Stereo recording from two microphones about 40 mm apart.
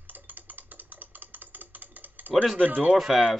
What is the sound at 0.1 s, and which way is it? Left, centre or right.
Typing, right.